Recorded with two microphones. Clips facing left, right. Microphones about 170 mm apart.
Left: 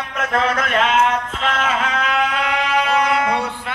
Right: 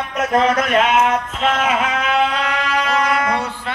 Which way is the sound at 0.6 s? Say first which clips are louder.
Right 2 dB; 10° right (ahead or behind).